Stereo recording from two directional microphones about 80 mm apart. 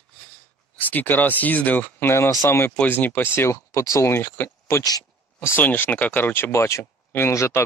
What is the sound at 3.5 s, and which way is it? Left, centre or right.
Speech, left.